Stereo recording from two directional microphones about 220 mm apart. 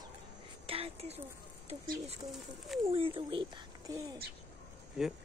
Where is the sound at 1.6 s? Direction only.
30° right (ahead or behind).